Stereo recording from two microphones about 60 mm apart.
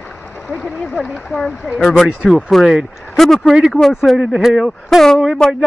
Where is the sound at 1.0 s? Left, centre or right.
Centre.